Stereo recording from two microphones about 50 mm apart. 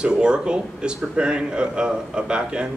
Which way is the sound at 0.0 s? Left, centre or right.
Centre.